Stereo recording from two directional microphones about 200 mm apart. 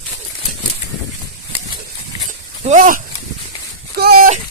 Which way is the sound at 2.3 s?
40° right (ahead or behind).